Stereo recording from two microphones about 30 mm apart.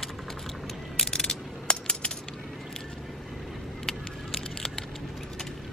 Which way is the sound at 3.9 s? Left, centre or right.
Centre.